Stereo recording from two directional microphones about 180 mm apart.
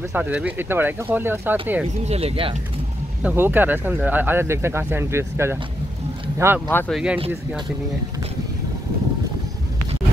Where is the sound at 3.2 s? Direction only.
10° right (ahead or behind).